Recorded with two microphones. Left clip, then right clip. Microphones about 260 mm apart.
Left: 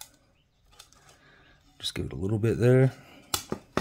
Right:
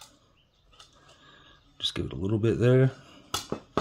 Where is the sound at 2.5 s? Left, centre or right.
Left.